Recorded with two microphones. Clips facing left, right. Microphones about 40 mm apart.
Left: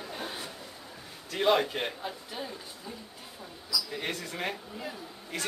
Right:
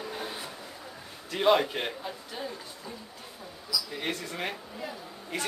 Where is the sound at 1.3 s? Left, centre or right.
Centre.